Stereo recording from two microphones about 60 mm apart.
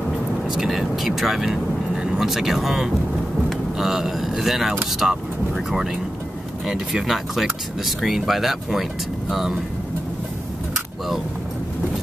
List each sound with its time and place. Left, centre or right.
0.6 s speech: centre